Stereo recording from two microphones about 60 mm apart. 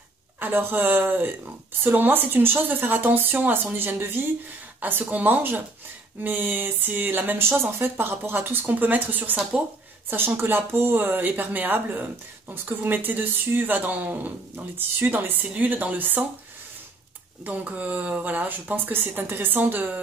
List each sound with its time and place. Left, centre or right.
0.4 s speech: right
17.5 s speech: right